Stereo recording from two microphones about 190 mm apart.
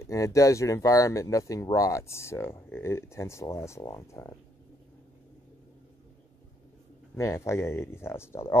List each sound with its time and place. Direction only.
0.0 s speech: 15° left (ahead or behind)
7.2 s speech: 15° left (ahead or behind)